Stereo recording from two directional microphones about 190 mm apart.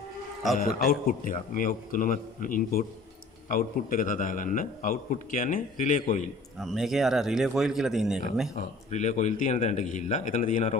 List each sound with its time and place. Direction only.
0.8 s a man's voice: 45° left (ahead or behind)
6.6 s a man's voice: centre (ahead or behind)
8.5 s speech: 40° left (ahead or behind)